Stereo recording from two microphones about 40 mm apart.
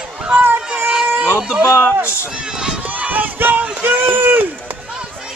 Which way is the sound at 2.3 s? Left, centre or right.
Centre.